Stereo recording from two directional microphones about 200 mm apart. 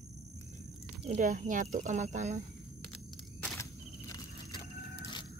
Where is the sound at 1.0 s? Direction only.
35° right (ahead or behind).